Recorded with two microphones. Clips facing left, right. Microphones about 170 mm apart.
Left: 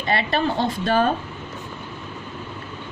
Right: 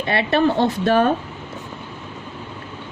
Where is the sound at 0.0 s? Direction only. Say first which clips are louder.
Right 4 dB; 60° right (ahead or behind).